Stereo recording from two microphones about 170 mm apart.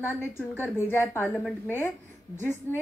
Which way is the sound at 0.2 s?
15° left (ahead or behind).